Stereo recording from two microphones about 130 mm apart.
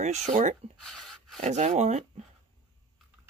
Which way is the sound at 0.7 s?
5° left (ahead or behind).